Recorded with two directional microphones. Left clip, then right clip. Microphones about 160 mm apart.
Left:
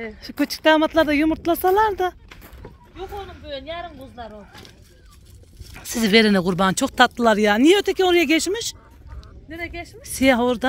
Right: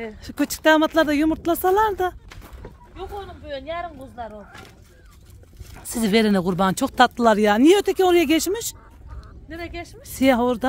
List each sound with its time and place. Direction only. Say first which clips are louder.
0.2 s speech: left 1 dB; centre (ahead or behind)
2.6 s a sound: left 1 dB; 35° left (ahead or behind)
3.4 s speech: right 3 dB; 35° left (ahead or behind)
5.8 s speech: left 4 dB; centre (ahead or behind)